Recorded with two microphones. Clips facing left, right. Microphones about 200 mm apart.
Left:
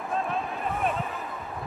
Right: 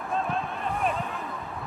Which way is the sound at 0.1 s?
Centre (ahead or behind).